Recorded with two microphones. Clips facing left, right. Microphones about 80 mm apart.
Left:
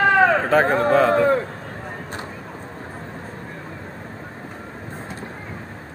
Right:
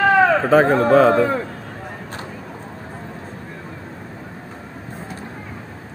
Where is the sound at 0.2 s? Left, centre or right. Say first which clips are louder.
Right 1 dB; left.